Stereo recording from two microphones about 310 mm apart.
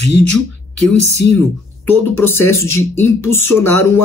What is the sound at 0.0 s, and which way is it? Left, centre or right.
Speech, left.